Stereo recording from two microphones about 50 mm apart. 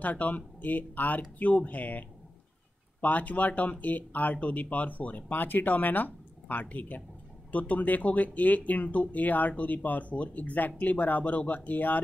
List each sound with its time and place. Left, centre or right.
0.0 s speech: left